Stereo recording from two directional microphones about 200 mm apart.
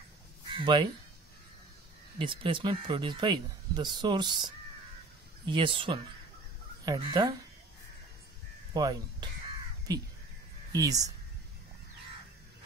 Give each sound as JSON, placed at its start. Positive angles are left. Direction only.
{"t": 0.5, "sound": "speech", "side_deg": -25}
{"t": 2.1, "sound": "speech", "side_deg": -25}
{"t": 8.7, "sound": "speech", "side_deg": -20}